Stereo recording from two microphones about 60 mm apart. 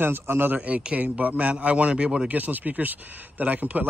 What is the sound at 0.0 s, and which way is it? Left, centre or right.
Speech, right.